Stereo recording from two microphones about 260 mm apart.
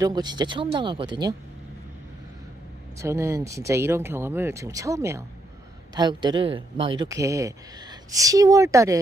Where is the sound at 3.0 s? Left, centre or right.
Centre.